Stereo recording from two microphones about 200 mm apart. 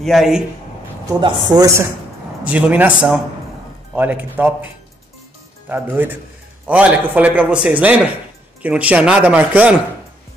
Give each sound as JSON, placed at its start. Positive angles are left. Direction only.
{"t": 0.0, "sound": "a man's voice", "side_deg": 0}
{"t": 1.2, "sound": "speech", "side_deg": -20}
{"t": 2.4, "sound": "speech", "side_deg": -5}
{"t": 5.7, "sound": "speech", "side_deg": -10}